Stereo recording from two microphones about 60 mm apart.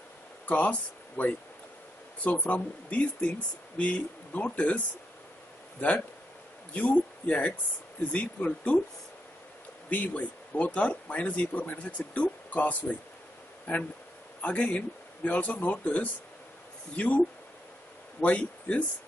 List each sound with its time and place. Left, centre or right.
0.5 s speech: left
9.8 s speech: left
14.4 s speech: left
18.2 s speech: left